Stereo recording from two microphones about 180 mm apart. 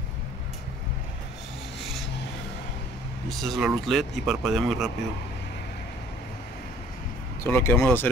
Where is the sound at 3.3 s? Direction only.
Centre (ahead or behind).